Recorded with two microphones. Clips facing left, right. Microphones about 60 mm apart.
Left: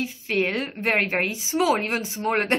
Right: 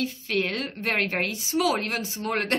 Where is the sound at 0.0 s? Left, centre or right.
Left.